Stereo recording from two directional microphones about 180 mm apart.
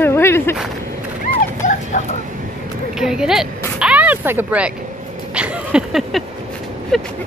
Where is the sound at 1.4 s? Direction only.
45° left (ahead or behind).